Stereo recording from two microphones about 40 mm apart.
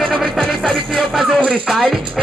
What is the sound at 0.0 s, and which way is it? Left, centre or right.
Music, centre.